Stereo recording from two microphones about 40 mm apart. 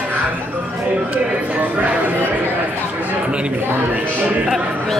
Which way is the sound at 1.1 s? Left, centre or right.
Right.